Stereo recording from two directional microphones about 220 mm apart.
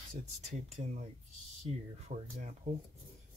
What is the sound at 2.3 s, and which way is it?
Speech, 30° right (ahead or behind).